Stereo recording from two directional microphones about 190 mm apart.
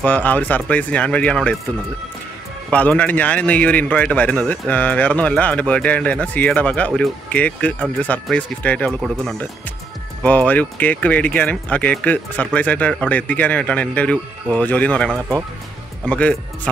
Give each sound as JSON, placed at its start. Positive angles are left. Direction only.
{"t": 0.0, "sound": "a man's voice", "side_deg": 10}
{"t": 2.7, "sound": "a man's voice", "side_deg": 5}
{"t": 15.1, "sound": "speech", "side_deg": -15}
{"t": 16.1, "sound": "a man's voice", "side_deg": 5}